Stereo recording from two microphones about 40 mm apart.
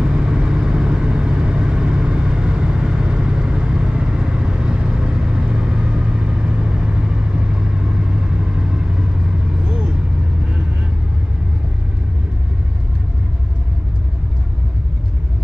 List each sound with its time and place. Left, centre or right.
0.0 s vehicle: centre
9.7 s vehicle: right